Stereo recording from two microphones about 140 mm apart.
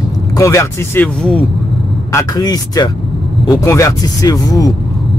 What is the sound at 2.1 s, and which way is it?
Speech, 25° left (ahead or behind).